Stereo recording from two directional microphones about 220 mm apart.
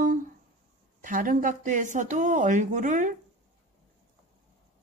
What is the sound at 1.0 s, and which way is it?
Speech, 40° right (ahead or behind).